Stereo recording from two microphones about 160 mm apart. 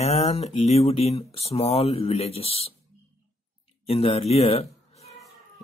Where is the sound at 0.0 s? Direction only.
40° left (ahead or behind).